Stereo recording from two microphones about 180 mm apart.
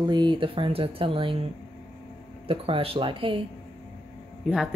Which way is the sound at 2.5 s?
30° right (ahead or behind).